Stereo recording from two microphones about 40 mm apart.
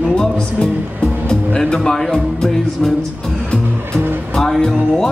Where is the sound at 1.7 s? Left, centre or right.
Centre.